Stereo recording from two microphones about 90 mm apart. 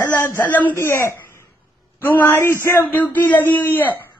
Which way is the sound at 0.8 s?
30° left (ahead or behind).